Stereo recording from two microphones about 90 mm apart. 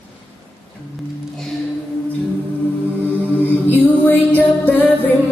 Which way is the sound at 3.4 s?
20° left (ahead or behind).